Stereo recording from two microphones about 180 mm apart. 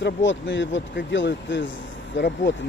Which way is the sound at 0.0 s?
85° left.